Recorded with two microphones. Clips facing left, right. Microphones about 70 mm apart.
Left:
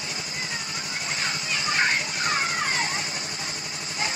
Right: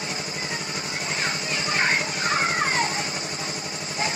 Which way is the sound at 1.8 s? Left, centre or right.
Right.